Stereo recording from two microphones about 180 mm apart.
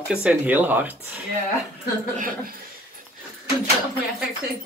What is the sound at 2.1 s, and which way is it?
Speech, 50° right (ahead or behind).